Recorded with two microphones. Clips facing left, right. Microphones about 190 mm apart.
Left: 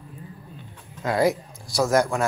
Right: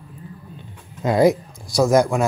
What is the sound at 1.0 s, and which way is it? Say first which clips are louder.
Speech: right 6 dB; 20° right (ahead or behind).